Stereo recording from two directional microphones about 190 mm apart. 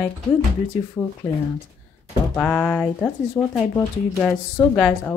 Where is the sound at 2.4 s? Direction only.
10° left (ahead or behind).